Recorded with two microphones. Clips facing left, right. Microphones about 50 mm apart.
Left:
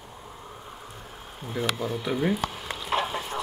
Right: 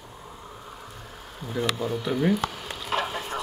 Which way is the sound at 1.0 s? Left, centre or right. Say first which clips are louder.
Even; centre.